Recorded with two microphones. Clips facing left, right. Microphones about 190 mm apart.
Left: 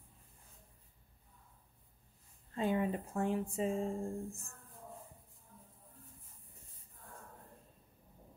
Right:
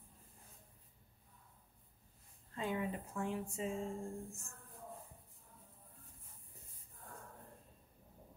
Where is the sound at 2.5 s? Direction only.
35° left (ahead or behind).